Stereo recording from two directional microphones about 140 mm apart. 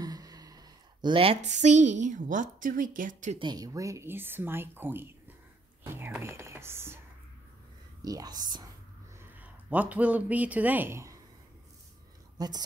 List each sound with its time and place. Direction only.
0.0 s a sound: 25° right (ahead or behind)
1.5 s a woman's voice: 60° right (ahead or behind)
3.3 s speech: 30° right (ahead or behind)
5.9 s whispering: 15° right (ahead or behind)
8.0 s speech: 25° right (ahead or behind)
9.3 s speech: 10° right (ahead or behind)
12.4 s speech: 30° right (ahead or behind)